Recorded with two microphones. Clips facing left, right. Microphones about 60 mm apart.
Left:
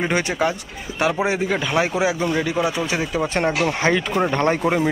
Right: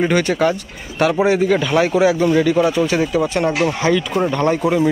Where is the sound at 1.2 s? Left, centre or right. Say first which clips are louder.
Right 6 dB; left.